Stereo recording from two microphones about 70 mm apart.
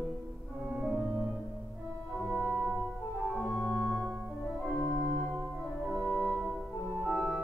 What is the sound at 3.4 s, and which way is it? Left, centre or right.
Organ, left.